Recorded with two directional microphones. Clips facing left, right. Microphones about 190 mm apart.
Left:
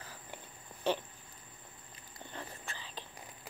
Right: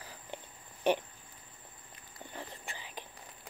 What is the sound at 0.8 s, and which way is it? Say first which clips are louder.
Speech: right 4 dB; 15° right (ahead or behind).